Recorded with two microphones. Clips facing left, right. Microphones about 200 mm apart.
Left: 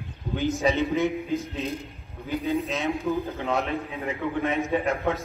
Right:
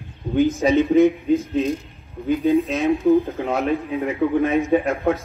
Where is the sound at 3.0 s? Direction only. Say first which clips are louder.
Right 13 dB; 30° right (ahead or behind).